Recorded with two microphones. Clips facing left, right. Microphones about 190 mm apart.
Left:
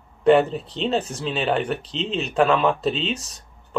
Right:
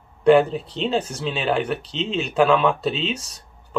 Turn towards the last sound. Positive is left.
turn(degrees=0)  # may be behind; listen again after turning